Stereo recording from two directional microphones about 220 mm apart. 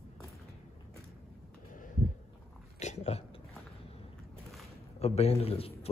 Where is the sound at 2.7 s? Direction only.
30° left (ahead or behind).